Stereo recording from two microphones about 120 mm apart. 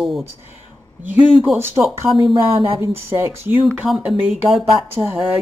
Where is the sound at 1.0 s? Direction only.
15° right (ahead or behind).